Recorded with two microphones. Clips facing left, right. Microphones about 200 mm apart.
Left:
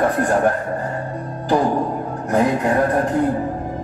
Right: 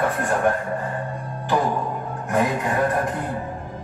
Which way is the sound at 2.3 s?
35° left (ahead or behind).